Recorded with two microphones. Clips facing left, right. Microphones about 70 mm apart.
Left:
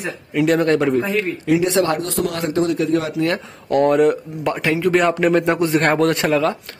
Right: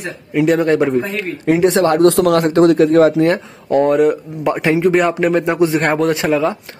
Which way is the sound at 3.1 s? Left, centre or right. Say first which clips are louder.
Right 6 dB; right.